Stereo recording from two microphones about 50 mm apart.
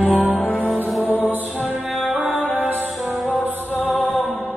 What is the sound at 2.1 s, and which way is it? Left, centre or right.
Music, right.